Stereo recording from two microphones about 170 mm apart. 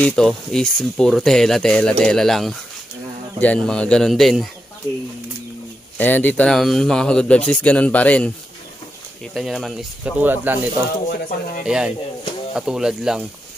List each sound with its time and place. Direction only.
0.0 s speech: 5° left (ahead or behind)
5.9 s speech: 10° left (ahead or behind)
9.3 s speech: centre (ahead or behind)
11.1 s speech: 50° left (ahead or behind)
11.6 s speech: 5° right (ahead or behind)